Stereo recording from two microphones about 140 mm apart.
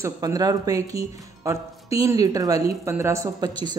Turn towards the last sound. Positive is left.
turn(degrees=-25)  # may be behind; listen again after turning